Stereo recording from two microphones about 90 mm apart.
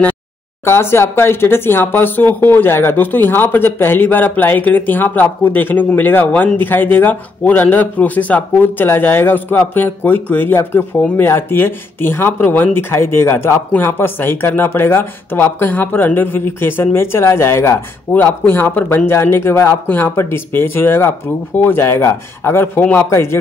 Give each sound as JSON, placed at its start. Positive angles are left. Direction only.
{"t": 0.7, "sound": "speech", "side_deg": 30}